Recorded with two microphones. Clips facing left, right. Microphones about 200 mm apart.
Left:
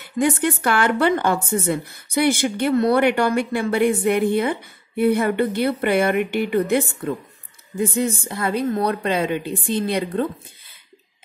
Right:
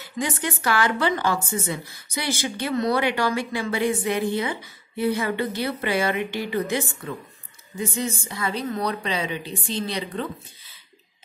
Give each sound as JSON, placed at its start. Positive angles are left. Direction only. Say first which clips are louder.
{"t": 0.0, "sound": "speech", "louder": "left 8 dB", "side_deg": 60}